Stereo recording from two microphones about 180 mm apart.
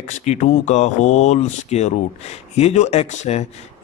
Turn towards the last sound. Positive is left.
turn(degrees=40)  # may be behind; listen again after turning